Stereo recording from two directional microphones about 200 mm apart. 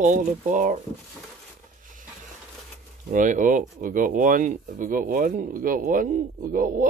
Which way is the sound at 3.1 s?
40° right (ahead or behind).